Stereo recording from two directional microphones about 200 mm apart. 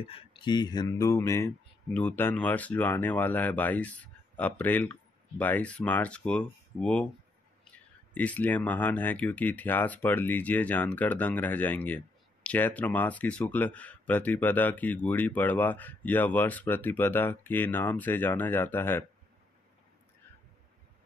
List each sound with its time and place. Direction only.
0.0 s speech: 30° left (ahead or behind); by 19.0 s 10° left (ahead or behind)